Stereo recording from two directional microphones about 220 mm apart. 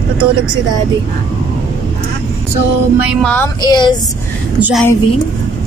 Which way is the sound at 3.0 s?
Centre (ahead or behind).